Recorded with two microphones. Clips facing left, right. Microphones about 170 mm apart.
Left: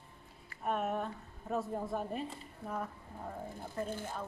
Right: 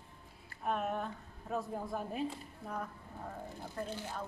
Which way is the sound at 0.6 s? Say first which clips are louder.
Left 1 dB; centre (ahead or behind).